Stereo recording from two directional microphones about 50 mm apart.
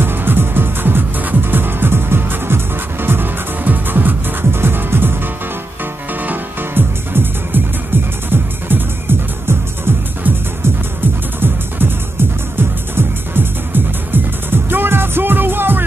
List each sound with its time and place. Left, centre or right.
0.0 s music: right
11.3 s music: right